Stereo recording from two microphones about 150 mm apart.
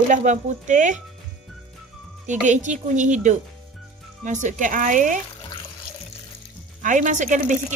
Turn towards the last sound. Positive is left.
turn(degrees=-55)  # may be behind; listen again after turning